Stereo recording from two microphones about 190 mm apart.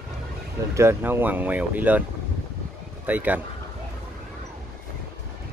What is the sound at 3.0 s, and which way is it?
Speech, 10° right (ahead or behind).